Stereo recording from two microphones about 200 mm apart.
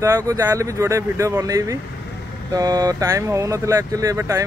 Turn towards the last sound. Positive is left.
turn(degrees=-15)  # may be behind; listen again after turning